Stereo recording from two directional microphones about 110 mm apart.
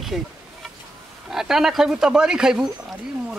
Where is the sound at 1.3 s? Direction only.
5° right (ahead or behind).